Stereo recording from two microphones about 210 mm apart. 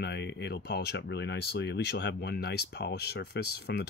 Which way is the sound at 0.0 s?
55° left (ahead or behind).